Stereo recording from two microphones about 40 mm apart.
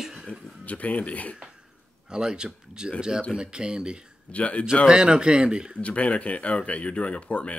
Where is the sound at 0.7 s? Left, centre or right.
Left.